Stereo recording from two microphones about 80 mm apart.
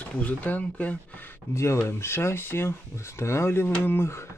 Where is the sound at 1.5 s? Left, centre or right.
Left.